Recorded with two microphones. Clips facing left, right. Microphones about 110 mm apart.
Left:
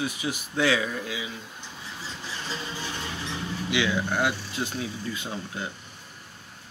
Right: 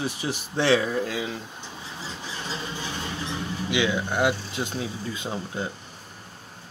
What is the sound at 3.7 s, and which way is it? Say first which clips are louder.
Speech: right 1 dB; 20° right (ahead or behind).